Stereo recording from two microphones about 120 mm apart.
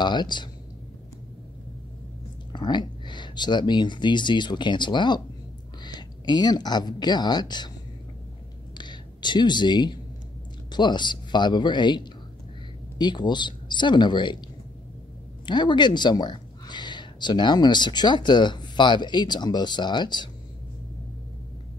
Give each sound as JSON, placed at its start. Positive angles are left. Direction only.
{"t": 0.0, "sound": "speech", "side_deg": 40}
{"t": 2.5, "sound": "speech", "side_deg": 40}
{"t": 8.7, "sound": "a sound", "side_deg": 40}
{"t": 10.7, "sound": "speech", "side_deg": 40}
{"t": 15.4, "sound": "speech", "side_deg": 40}